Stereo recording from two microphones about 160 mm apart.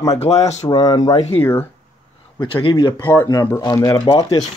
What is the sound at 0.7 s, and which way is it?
Speech, 25° left (ahead or behind).